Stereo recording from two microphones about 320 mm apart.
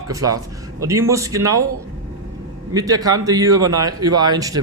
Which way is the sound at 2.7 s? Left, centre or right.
Centre.